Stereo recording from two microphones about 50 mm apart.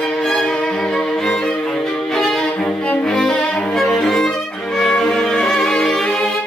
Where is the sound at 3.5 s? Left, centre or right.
Left.